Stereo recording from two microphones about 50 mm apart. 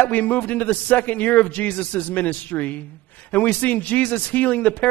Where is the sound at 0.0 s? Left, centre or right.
Left.